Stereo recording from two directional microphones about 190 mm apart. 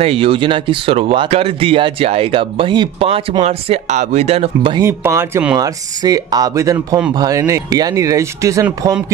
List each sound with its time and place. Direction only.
0.0 s speech: 30° right (ahead or behind)
4.7 s speech: 15° right (ahead or behind)